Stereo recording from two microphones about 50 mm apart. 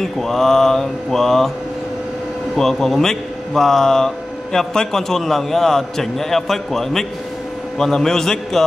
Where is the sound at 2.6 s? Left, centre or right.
Centre.